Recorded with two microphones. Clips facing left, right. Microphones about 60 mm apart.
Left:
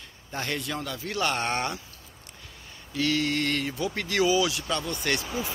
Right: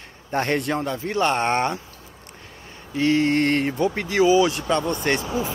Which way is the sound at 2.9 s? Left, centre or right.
Right.